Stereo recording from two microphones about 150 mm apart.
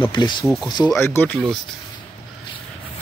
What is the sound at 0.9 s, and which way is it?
Speech, 15° left (ahead or behind).